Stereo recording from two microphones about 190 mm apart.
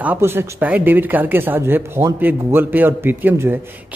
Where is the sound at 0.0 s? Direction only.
10° right (ahead or behind).